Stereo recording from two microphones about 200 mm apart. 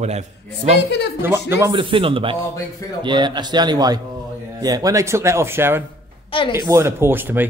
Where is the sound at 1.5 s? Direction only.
15° right (ahead or behind).